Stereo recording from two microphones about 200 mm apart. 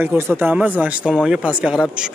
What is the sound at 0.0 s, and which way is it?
Speech, 10° right (ahead or behind).